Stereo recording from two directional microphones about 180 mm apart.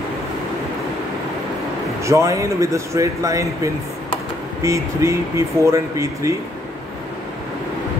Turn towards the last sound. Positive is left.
turn(degrees=-15)  # may be behind; listen again after turning